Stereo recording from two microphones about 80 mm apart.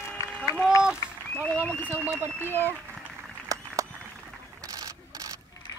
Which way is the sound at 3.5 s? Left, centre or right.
Right.